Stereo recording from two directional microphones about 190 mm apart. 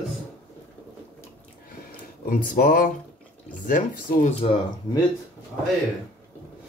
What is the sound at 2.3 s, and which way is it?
Speech, 45° left (ahead or behind).